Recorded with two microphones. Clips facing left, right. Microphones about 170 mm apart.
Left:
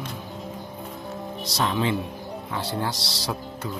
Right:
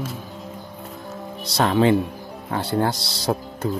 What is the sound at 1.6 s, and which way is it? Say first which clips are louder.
Speech: right 7 dB; 55° right (ahead or behind).